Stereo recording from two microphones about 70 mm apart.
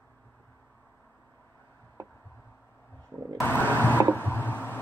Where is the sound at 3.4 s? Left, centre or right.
Left.